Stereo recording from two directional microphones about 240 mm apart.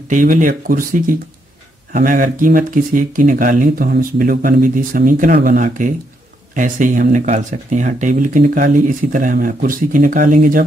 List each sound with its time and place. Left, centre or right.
0.1 s speech: right